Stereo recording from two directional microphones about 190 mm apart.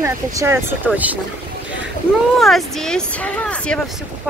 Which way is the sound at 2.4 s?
Centre (ahead or behind).